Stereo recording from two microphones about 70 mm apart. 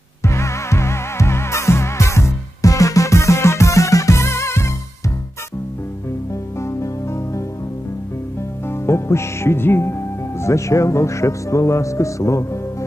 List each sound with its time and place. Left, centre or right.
0.2 s music: left
6.6 s music: left
8.6 s speech: left